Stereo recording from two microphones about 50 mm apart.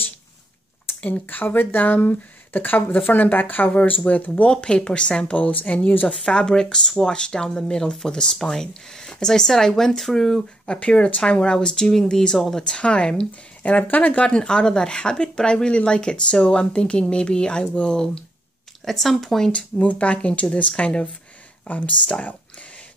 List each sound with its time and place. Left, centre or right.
1.0 s speech: left
4.5 s speech: centre
6.1 s speech: centre
10.7 s speech: left
12.6 s speech: centre
13.6 s speech: left; by 19.5 s centre
19.5 s speech: left